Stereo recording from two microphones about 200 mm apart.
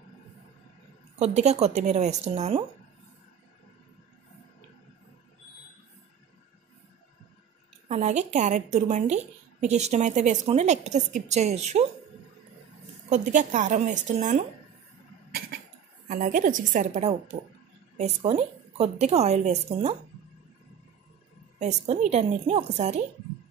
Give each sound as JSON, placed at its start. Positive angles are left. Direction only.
{"t": 1.2, "sound": "a woman's voice", "side_deg": -35}
{"t": 7.9, "sound": "a woman's voice", "side_deg": -35}
{"t": 13.1, "sound": "a woman's voice", "side_deg": -40}
{"t": 16.1, "sound": "a woman's voice", "side_deg": -45}
{"t": 21.5, "sound": "a woman's voice", "side_deg": -35}